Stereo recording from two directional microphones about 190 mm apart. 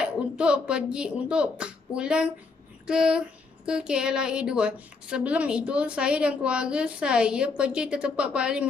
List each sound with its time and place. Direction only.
0.0 s speech: 5° right (ahead or behind)